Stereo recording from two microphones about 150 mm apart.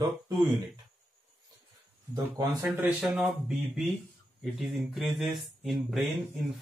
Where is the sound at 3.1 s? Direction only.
5° right (ahead or behind).